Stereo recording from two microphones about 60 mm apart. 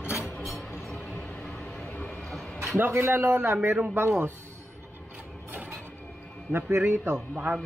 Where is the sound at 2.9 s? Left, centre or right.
Right.